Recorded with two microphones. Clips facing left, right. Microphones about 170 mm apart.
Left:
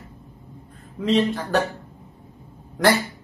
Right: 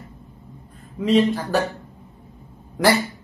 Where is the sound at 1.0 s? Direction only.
10° right (ahead or behind).